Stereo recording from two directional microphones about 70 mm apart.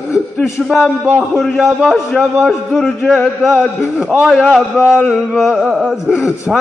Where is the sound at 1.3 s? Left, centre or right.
Centre.